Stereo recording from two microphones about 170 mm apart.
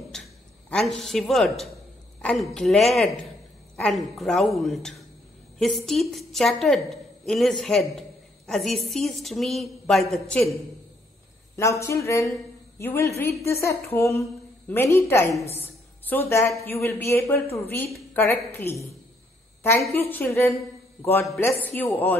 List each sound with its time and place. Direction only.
0.1 s a sound: 5° left (ahead or behind)
0.7 s a woman's voice: centre (ahead or behind)
11.8 s a man's voice: 15° left (ahead or behind)